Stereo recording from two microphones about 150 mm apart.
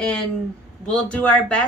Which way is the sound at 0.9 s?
5° left (ahead or behind).